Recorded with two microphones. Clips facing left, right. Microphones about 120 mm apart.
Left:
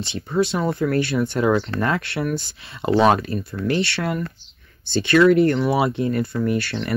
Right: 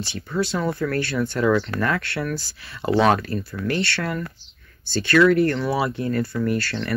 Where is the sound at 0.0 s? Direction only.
20° left (ahead or behind).